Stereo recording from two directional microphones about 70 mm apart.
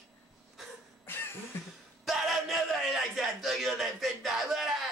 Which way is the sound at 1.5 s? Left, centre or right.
Left.